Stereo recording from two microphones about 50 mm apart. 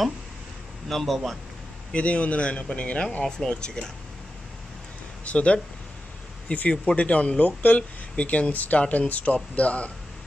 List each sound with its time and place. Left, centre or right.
0.8 s a man's voice: centre
1.9 s speech: left
3.3 s speech: centre
5.2 s speech: left
6.7 s speech: left